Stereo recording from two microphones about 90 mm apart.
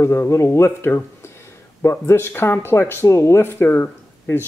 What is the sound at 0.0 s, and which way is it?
Speech, 30° left (ahead or behind).